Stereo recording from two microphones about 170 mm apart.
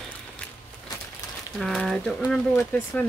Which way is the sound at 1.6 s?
Centre (ahead or behind).